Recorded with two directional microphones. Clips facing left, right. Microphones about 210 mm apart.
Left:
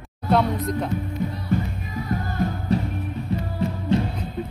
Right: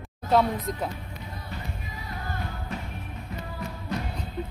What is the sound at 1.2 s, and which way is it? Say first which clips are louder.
Music: left 16 dB; 50° left (ahead or behind).